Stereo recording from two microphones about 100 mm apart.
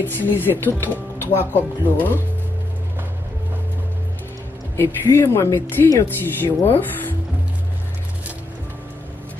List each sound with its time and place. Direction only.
0.0 s speech: 20° left (ahead or behind)
4.7 s speech: 25° left (ahead or behind)